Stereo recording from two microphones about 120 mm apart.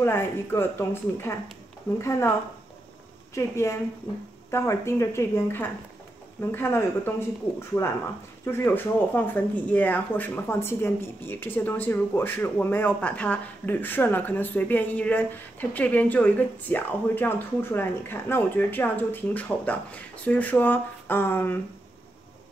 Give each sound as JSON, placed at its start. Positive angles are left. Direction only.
{"t": 0.0, "sound": "speech", "side_deg": 20}
{"t": 3.3, "sound": "speech", "side_deg": 25}